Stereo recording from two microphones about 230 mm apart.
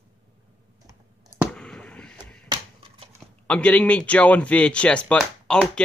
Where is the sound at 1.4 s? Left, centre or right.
Centre.